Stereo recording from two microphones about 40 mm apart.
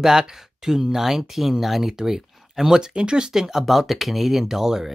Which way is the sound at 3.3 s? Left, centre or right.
Centre.